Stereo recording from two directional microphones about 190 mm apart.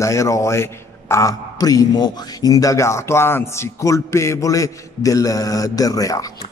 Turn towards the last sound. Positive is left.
turn(degrees=20)  # may be behind; listen again after turning